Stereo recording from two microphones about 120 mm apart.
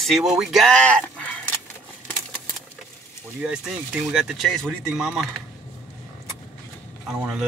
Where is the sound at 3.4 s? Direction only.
10° right (ahead or behind).